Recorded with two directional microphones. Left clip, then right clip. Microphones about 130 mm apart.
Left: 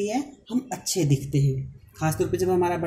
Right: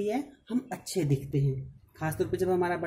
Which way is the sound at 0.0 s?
45° right (ahead or behind).